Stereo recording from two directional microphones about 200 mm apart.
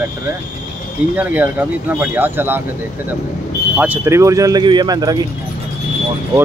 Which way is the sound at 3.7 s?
5° right (ahead or behind).